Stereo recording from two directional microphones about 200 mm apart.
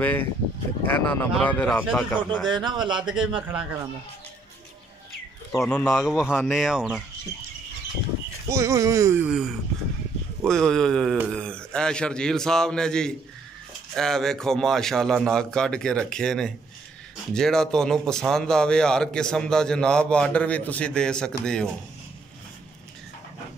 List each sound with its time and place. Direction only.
0.0 s speech: 10° left (ahead or behind)
2.4 s speech: 20° right (ahead or behind)
3.0 s speech: 5° right (ahead or behind)
5.6 s speech: 5° left (ahead or behind)
8.5 s speech: 15° right (ahead or behind); by 21.6 s 5° left (ahead or behind)